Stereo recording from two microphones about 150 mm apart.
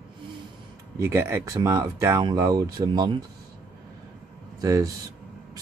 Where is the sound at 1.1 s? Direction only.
15° right (ahead or behind).